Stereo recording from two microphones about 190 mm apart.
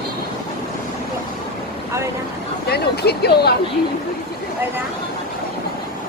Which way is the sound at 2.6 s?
55° left (ahead or behind).